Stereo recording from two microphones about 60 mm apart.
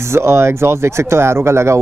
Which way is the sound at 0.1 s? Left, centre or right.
Right.